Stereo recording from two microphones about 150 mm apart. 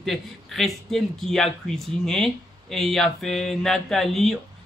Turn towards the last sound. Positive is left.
turn(degrees=0)  # may be behind; listen again after turning